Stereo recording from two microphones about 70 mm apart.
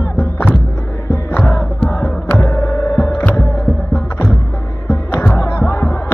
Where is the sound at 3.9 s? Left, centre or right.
Centre.